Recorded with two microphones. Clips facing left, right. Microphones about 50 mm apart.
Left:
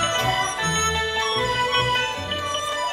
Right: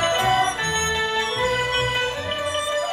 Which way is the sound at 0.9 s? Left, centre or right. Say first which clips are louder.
Right 1 dB; centre.